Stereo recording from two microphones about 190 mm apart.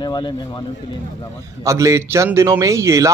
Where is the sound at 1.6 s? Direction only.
15° right (ahead or behind).